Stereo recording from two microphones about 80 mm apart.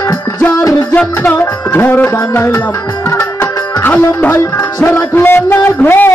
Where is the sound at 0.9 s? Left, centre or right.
Left.